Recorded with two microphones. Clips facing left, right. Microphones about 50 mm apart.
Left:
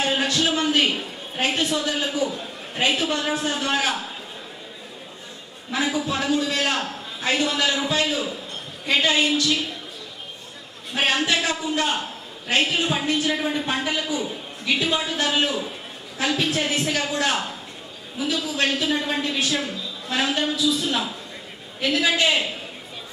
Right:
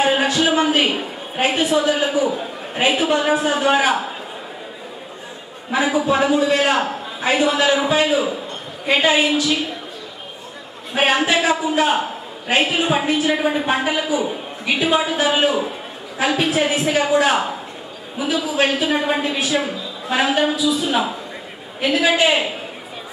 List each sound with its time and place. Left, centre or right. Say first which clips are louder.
0.0 s a man's voice: right 5 dB; centre
5.7 s a man's voice: right 7 dB; centre
10.9 s a man's voice: right 5 dB; centre